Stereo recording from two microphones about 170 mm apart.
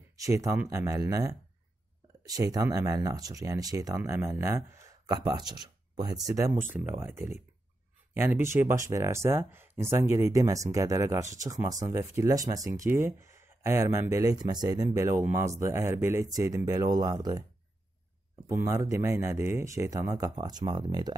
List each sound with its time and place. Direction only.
0.2 s speech: 20° right (ahead or behind)
18.5 s speech: 20° right (ahead or behind)